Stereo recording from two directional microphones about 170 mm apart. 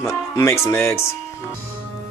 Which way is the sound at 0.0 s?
15° left (ahead or behind).